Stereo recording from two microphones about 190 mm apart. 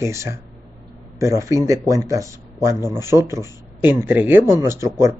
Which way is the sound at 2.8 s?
20° left (ahead or behind).